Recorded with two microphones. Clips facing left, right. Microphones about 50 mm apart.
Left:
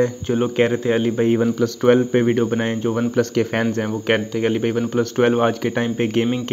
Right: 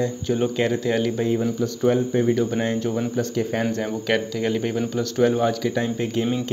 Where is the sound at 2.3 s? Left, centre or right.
Left.